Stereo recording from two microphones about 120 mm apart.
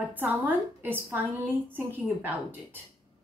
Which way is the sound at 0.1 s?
15° right (ahead or behind).